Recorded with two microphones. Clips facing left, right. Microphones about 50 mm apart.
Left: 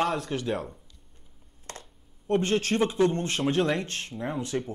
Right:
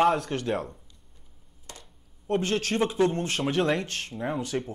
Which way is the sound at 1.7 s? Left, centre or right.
Left.